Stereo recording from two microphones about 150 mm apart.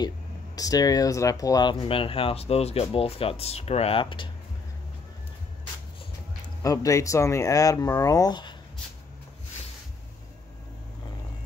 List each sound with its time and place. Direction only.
0.6 s speech: 25° left (ahead or behind)
6.6 s speech: 20° left (ahead or behind)